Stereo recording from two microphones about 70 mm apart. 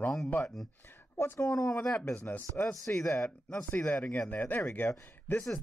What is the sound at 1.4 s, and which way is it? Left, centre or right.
Speech, left.